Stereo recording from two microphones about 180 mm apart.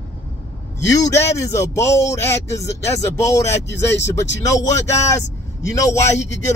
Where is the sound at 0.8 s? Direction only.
20° left (ahead or behind).